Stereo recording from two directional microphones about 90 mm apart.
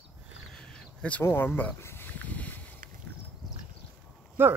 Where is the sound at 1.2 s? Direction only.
25° left (ahead or behind).